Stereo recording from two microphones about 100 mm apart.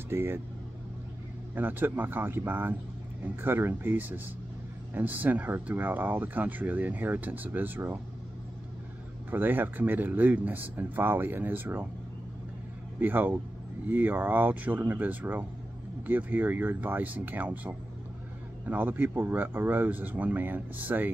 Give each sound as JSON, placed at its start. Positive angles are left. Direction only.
{"t": 0.1, "sound": "speech", "side_deg": -25}
{"t": 1.5, "sound": "speech", "side_deg": -20}
{"t": 9.3, "sound": "speech", "side_deg": -20}
{"t": 13.0, "sound": "speech", "side_deg": -20}